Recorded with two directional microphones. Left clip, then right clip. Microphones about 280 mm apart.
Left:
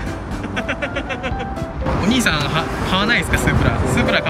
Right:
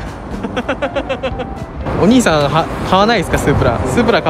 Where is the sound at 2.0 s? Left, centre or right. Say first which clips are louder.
Right 8 dB; centre.